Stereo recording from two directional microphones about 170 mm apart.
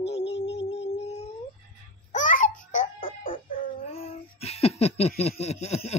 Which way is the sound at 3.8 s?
35° left (ahead or behind).